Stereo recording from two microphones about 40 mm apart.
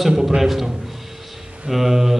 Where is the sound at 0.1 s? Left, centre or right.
Centre.